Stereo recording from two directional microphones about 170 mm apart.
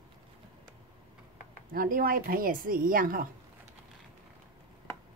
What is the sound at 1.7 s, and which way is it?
Speech, 55° right (ahead or behind).